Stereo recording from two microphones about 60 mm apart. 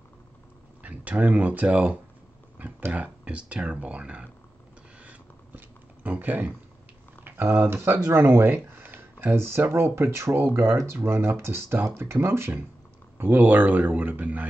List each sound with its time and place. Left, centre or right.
0.8 s speech: right
6.0 s speech: right
7.6 s speech: right
13.2 s speech: right